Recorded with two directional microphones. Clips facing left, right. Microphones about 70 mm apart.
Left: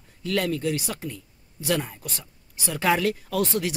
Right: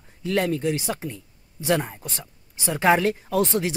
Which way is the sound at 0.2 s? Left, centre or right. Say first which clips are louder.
Right 2 dB; right.